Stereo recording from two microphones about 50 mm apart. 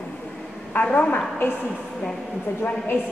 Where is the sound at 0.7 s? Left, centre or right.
Left.